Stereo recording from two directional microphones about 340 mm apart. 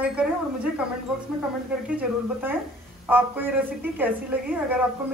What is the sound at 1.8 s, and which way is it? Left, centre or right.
Speech, centre.